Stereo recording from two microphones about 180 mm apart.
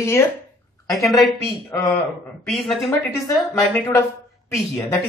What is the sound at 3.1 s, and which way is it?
Speech, 15° left (ahead or behind).